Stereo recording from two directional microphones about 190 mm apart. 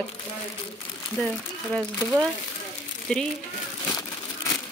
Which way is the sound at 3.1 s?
5° left (ahead or behind).